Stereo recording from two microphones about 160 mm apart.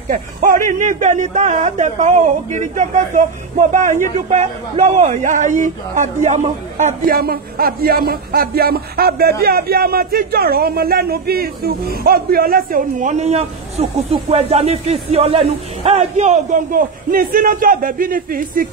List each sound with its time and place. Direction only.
0.1 s a man's voice: 60° right (ahead or behind)
7.2 s a man's voice: 70° right (ahead or behind)